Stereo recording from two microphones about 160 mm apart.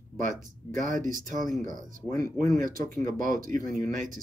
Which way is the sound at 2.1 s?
20° left (ahead or behind).